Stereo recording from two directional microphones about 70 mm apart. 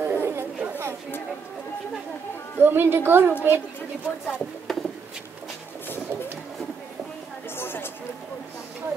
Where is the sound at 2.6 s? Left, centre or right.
Right.